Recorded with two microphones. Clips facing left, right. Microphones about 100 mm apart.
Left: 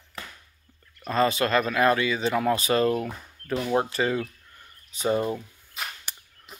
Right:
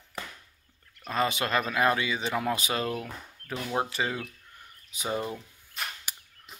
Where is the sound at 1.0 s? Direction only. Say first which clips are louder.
Left 5 dB; 10° right (ahead or behind).